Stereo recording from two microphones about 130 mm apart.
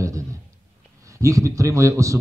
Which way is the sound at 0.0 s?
25° right (ahead or behind).